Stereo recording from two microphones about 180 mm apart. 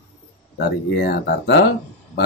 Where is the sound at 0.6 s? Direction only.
60° left (ahead or behind).